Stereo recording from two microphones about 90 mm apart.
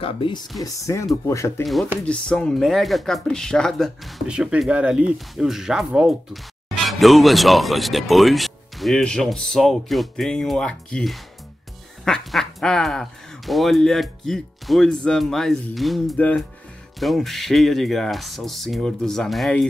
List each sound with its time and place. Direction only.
0.0 s speech: 75° left (ahead or behind)
0.7 s speech: 35° left (ahead or behind)
1.6 s speech: centre (ahead or behind)
4.3 s speech: 10° right (ahead or behind)
16.2 s speech: 20° left (ahead or behind)
17.0 s speech: centre (ahead or behind)